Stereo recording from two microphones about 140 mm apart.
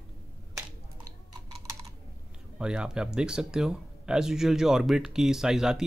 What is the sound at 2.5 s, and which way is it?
Speech, 5° right (ahead or behind).